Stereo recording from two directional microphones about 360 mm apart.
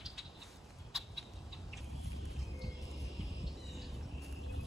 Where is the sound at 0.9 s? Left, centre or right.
Centre.